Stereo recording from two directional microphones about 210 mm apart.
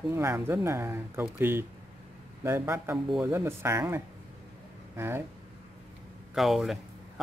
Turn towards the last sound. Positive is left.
turn(degrees=0)  # may be behind; listen again after turning